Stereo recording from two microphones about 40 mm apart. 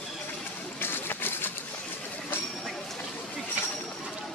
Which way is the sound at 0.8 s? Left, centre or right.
Left.